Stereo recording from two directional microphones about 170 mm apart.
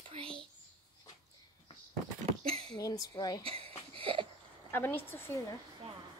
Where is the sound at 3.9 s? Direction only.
30° right (ahead or behind).